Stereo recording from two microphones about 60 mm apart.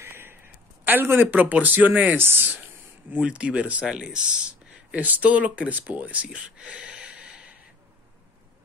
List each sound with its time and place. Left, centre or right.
0.0 s a sound: right
0.8 s speech: right
3.2 s speech: centre
3.8 s speech: centre